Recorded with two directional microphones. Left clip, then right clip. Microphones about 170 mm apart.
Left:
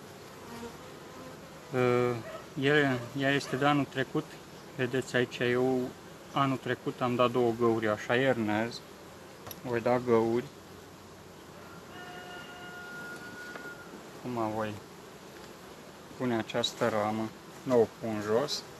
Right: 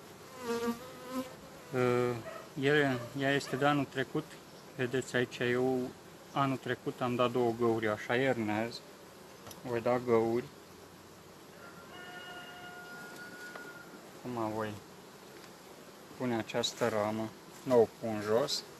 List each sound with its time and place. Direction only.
1.7 s speech: 5° right (ahead or behind)
14.3 s speech: 15° right (ahead or behind)
16.2 s speech: 20° right (ahead or behind); by 18.7 s 35° right (ahead or behind)